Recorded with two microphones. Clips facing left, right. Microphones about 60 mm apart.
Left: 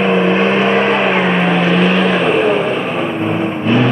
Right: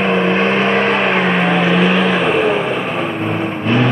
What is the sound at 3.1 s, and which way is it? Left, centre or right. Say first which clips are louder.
Vehicle: left 2 dB; right.